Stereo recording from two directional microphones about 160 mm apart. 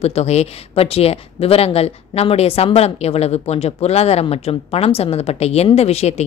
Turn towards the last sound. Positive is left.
turn(degrees=45)  # may be behind; listen again after turning